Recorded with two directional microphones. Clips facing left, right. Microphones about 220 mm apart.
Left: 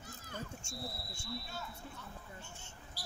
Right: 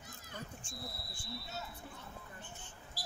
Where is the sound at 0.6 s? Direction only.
25° left (ahead or behind).